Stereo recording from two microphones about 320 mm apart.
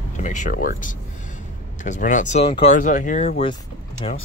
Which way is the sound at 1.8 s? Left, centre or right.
Left.